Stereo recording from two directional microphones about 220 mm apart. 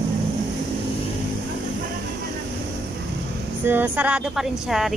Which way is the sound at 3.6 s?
10° right (ahead or behind).